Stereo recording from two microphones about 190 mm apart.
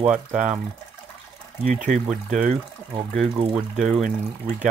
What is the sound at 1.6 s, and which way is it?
Speech, 40° right (ahead or behind).